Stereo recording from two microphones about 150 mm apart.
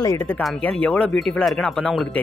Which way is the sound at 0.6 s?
10° left (ahead or behind).